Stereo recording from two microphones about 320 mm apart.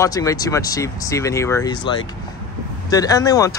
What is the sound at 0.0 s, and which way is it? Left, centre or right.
Speech, centre.